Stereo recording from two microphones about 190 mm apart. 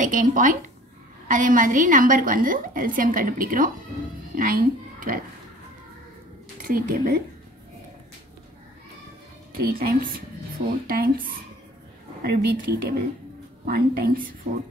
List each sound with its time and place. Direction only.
0.0 s a woman's voice: 45° right (ahead or behind)
6.6 s a woman's voice: 45° right (ahead or behind)
9.6 s a woman's voice: 50° right (ahead or behind)